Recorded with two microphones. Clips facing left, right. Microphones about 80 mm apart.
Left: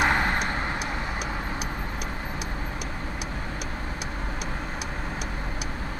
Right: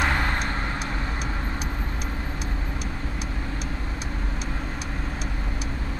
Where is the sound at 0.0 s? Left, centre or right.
Centre.